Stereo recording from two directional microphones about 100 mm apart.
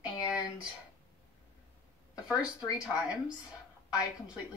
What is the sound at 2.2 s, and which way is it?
Speech, 10° right (ahead or behind).